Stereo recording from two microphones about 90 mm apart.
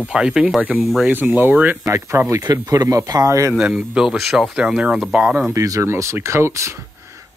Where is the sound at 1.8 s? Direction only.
30° right (ahead or behind).